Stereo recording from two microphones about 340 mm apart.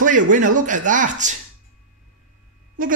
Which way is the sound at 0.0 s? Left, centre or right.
Right.